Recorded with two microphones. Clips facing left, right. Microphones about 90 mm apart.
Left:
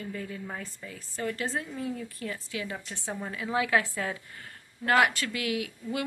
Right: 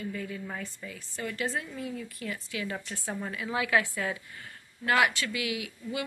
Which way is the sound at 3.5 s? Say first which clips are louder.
Left 1 dB; 30° left (ahead or behind).